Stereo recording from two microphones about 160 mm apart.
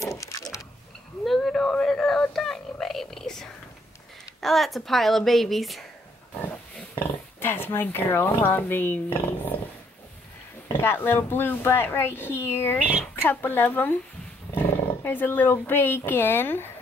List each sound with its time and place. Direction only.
0.0 s a sound: 20° left (ahead or behind)
1.2 s a sound: centre (ahead or behind)
4.4 s speech: centre (ahead or behind)
7.0 s speech: 15° left (ahead or behind)
10.8 s speech: 15° left (ahead or behind)
15.0 s speech: 10° left (ahead or behind)